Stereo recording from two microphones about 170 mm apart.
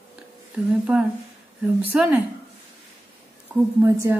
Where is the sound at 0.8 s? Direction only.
5° right (ahead or behind).